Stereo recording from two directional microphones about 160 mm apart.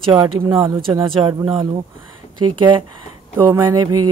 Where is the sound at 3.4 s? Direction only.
25° right (ahead or behind).